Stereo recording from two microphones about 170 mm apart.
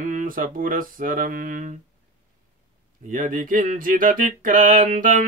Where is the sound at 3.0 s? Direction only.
50° right (ahead or behind).